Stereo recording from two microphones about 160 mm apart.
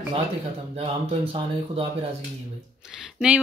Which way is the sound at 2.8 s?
5° right (ahead or behind).